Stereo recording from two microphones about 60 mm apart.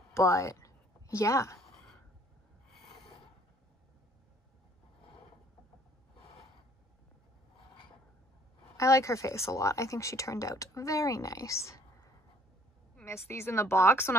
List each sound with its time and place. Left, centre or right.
0.1 s a woman's voice: left
8.7 s speech: left
13.0 s a woman's voice: left